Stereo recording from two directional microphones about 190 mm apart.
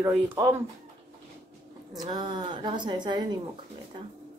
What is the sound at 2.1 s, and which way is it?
A woman's voice, 20° right (ahead or behind).